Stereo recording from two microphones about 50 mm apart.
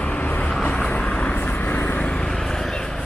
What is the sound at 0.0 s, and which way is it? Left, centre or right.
Vehicle, left.